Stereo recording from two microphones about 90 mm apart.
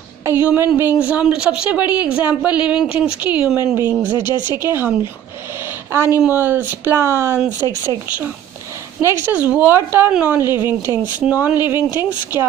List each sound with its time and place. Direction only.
0.2 s a woman's voice: 20° right (ahead or behind)
9.0 s speech: 30° right (ahead or behind)
9.3 s speech: 15° right (ahead or behind)